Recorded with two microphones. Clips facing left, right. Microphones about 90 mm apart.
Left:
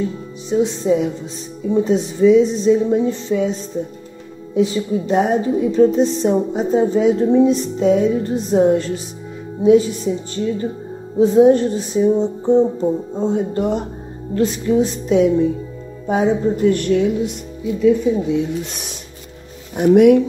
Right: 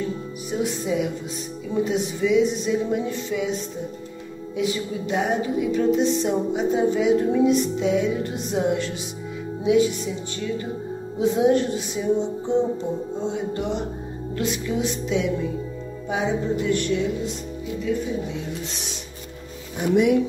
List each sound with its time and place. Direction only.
0.5 s speech: 25° left (ahead or behind)
4.6 s speech: 35° left (ahead or behind)
16.1 s music: 45° left (ahead or behind)
19.8 s speech: 55° left (ahead or behind)